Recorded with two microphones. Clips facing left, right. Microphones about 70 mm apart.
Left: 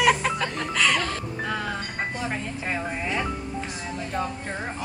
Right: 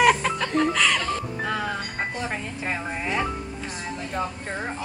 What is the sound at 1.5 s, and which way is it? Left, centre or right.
Music, centre.